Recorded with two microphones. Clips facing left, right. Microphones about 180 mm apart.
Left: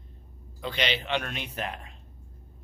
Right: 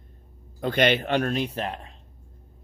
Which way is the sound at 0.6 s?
50° right (ahead or behind).